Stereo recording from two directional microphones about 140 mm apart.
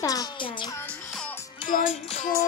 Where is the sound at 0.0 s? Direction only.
25° left (ahead or behind).